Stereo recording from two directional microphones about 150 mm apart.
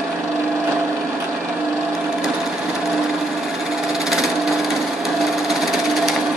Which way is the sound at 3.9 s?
Centre (ahead or behind).